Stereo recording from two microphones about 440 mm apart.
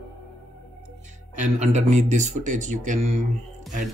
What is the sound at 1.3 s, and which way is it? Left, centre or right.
Speech, centre.